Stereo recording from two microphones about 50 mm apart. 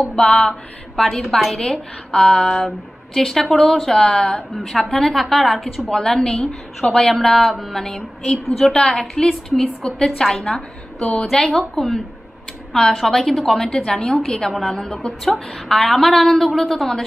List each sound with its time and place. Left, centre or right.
0.2 s a woman's voice: centre
1.7 s a woman's voice: centre
14.5 s a woman's voice: centre